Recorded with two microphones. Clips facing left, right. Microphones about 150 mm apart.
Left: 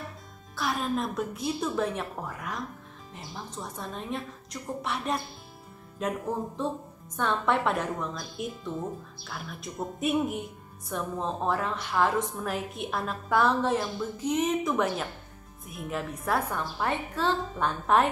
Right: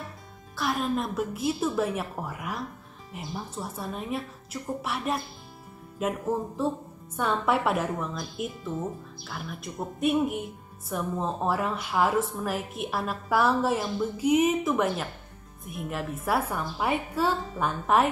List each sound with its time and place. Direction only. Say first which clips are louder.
0.6 s a woman's voice: right 1 dB; centre (ahead or behind)